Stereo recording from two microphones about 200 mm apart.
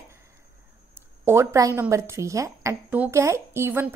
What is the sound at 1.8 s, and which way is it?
A woman's voice, 15° right (ahead or behind).